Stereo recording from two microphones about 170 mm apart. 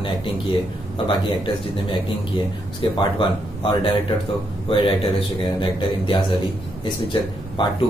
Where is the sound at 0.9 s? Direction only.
30° left (ahead or behind).